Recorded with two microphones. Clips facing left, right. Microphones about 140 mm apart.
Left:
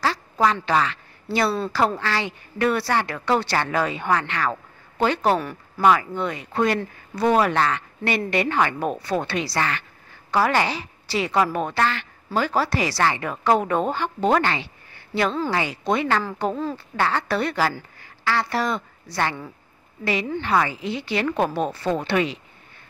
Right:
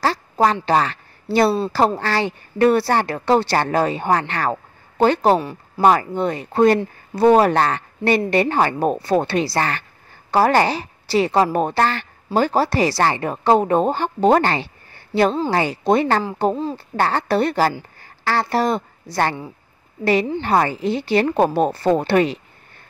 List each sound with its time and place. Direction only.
0.0 s a sound: 35° right (ahead or behind)
0.7 s speech: 40° right (ahead or behind)
5.8 s a woman's voice: 40° right (ahead or behind)
20.4 s speech: 40° right (ahead or behind)